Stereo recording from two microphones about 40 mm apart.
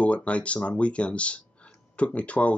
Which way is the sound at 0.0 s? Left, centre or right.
Left.